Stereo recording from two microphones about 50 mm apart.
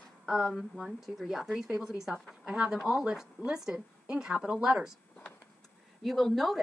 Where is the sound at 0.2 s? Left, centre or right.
Centre.